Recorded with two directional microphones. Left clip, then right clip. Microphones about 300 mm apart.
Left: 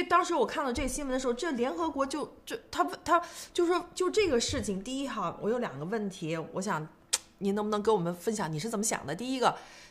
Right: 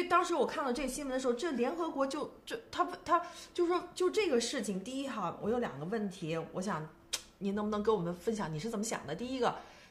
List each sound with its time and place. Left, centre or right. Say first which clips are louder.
0.1 s a woman's voice: left 4 dB; left